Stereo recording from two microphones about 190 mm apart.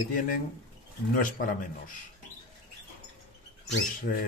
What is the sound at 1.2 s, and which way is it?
Speech, 45° left (ahead or behind).